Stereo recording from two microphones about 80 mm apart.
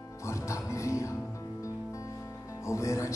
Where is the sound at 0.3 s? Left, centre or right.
Left.